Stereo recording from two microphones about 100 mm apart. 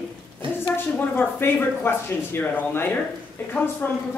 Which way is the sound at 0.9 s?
20° left (ahead or behind).